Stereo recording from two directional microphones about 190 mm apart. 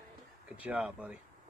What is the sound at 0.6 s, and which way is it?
Speech, 5° right (ahead or behind).